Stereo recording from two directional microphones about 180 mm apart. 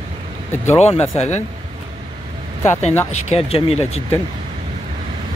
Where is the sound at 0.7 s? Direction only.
35° left (ahead or behind).